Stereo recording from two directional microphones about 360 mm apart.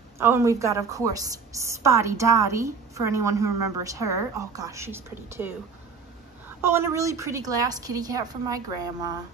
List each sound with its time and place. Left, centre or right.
0.2 s a woman's voice: centre
3.4 s a woman's voice: right
3.8 s a woman's voice: centre
6.6 s a woman's voice: centre